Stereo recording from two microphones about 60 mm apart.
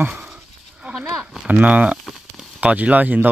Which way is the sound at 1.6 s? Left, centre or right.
Right.